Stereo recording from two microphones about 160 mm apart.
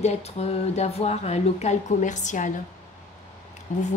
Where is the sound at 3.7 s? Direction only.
50° left (ahead or behind).